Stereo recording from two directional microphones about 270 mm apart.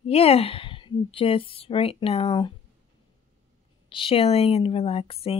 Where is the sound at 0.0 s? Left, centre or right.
Left.